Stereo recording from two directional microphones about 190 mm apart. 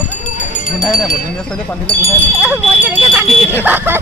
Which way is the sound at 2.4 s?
5° right (ahead or behind).